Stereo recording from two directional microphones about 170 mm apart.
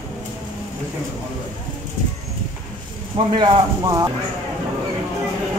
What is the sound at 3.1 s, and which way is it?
Speech, 30° right (ahead or behind).